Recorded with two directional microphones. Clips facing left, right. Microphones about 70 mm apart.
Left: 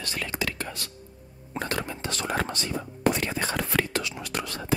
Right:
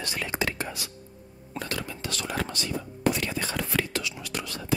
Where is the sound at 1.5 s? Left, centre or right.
Left.